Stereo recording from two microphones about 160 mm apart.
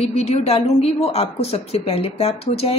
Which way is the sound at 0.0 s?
40° left (ahead or behind).